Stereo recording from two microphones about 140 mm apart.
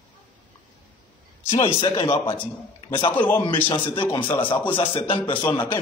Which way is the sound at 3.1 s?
10° left (ahead or behind).